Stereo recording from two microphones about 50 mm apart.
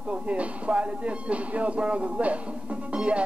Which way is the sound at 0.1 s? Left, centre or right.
Right.